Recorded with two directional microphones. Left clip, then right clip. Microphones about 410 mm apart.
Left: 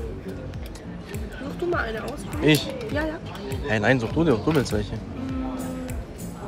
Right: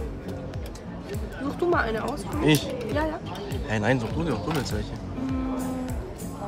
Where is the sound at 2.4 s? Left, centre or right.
Centre.